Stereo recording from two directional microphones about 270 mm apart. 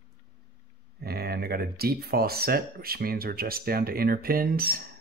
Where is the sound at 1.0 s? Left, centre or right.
Right.